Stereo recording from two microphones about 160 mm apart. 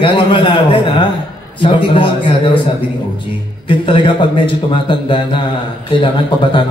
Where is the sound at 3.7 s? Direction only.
30° left (ahead or behind).